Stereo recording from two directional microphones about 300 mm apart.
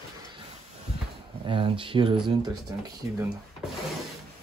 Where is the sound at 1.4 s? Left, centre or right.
Centre.